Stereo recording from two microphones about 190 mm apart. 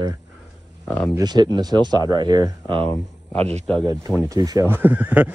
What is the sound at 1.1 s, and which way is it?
Speech, 20° right (ahead or behind).